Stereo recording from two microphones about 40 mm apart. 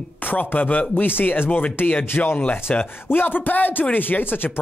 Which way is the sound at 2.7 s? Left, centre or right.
Left.